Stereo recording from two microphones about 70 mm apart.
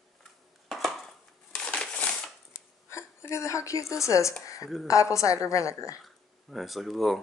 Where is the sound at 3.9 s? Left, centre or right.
Left.